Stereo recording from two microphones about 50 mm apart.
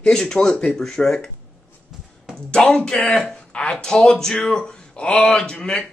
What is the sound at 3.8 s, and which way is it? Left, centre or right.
A man's voice, centre.